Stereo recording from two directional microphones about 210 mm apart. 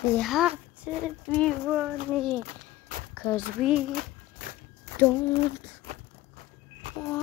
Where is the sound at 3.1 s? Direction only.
10° left (ahead or behind).